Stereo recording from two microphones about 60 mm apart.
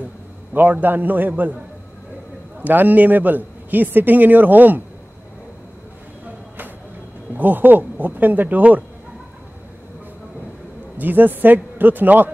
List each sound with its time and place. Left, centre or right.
0.5 s a man's voice: right
2.6 s a man's voice: right
7.3 s a man's voice: right
11.0 s a man's voice: right